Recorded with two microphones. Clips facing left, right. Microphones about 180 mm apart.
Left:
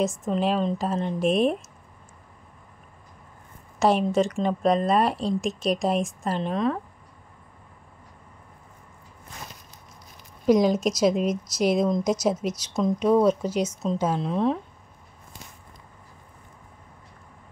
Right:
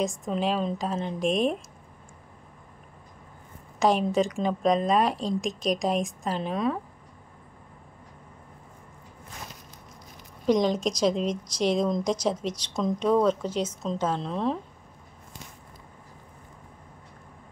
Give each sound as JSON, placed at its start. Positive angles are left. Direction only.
{"t": 0.0, "sound": "a woman's voice", "side_deg": 5}
{"t": 3.8, "sound": "a woman's voice", "side_deg": 0}
{"t": 10.4, "sound": "speech", "side_deg": 5}